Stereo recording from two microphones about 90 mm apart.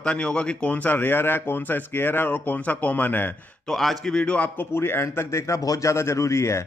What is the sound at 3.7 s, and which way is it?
Speech, 5° left (ahead or behind).